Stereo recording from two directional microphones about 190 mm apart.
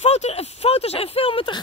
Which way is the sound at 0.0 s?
35° left (ahead or behind).